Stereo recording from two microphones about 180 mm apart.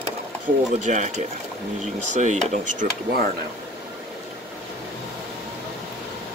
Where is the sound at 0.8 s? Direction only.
45° right (ahead or behind).